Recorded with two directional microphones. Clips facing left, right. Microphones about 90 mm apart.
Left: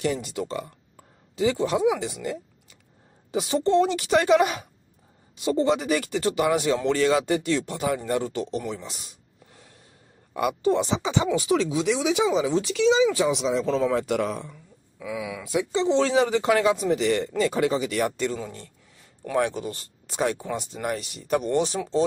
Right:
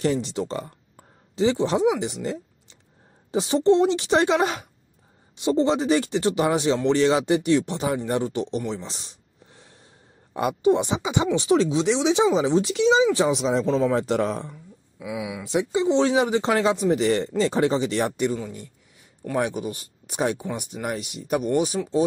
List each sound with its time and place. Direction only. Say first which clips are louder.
0.0 s speech: right 3 dB; 30° right (ahead or behind)
10.3 s speech: right 2 dB; 20° right (ahead or behind)
11.3 s speech: right 3 dB; 30° right (ahead or behind)
14.5 s speech: right 4 dB; 15° right (ahead or behind)
18.1 s speech: right 3 dB; 15° right (ahead or behind)